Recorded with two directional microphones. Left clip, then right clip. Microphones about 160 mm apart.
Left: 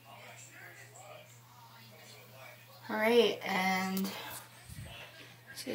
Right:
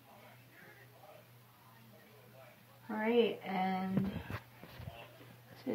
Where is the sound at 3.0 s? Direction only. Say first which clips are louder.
Left 5 dB; 20° right (ahead or behind).